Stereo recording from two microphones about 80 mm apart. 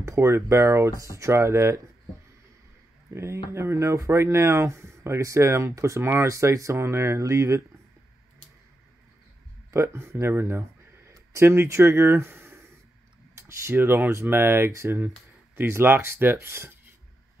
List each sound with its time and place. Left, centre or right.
0.0 s speech: right
3.1 s speech: right
9.7 s speech: right